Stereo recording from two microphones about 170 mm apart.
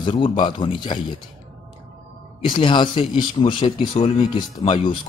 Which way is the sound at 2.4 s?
25° left (ahead or behind).